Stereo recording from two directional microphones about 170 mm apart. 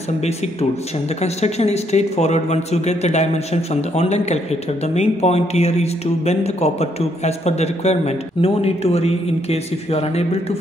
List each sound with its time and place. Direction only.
1.2 s speech: 40° left (ahead or behind)